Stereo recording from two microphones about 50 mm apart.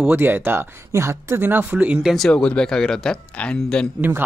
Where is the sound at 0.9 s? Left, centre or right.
Right.